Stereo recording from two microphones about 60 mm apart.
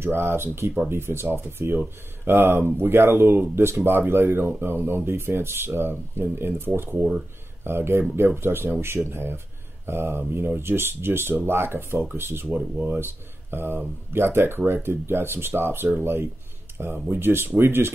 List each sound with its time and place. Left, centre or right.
0.0 s speech: right
12.5 s speech: right
13.0 s speech: right